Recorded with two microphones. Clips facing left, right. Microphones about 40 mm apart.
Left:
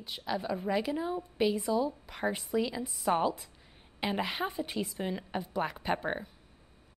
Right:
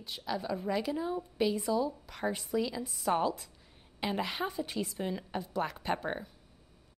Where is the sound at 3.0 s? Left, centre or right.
Centre.